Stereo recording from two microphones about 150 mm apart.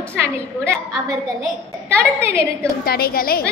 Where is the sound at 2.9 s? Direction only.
90° left.